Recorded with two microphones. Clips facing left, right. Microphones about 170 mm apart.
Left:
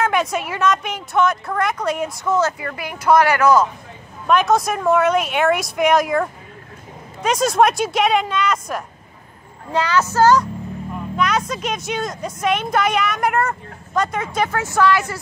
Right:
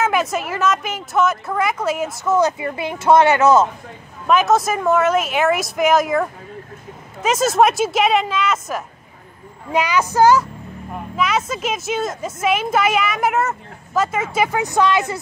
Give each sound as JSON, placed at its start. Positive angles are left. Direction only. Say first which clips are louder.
{"t": 0.0, "sound": "speech", "louder": "even", "side_deg": 0}
{"t": 2.4, "sound": "speech", "louder": "right 3 dB", "side_deg": -25}
{"t": 4.3, "sound": "speech", "louder": "right 1 dB", "side_deg": -5}